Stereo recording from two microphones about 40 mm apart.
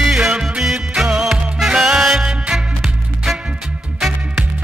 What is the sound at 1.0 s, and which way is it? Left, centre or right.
Music, centre.